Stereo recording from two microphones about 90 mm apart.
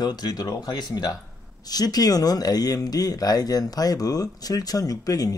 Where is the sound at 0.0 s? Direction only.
50° left (ahead or behind).